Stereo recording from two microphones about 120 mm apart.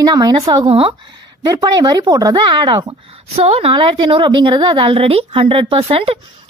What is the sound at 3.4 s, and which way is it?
A woman's voice, 60° right (ahead or behind).